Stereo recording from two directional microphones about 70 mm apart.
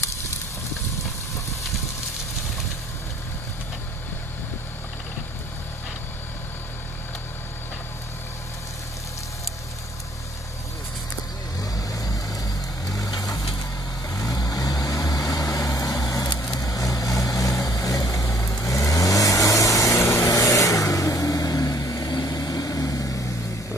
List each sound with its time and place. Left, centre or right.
11.6 s vehicle: left
20.2 s vehicle: left